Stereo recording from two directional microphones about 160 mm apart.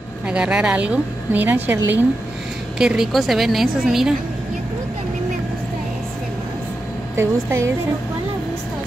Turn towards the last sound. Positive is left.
turn(degrees=-15)  # may be behind; listen again after turning